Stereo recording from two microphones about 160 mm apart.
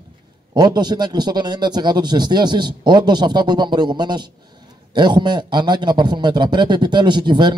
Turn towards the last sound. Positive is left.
turn(degrees=-30)  # may be behind; listen again after turning